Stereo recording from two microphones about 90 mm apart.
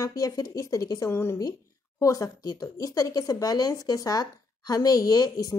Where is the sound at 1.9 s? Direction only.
35° left (ahead or behind).